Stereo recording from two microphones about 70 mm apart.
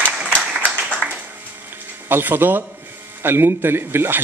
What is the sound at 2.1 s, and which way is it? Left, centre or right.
A man's voice, right.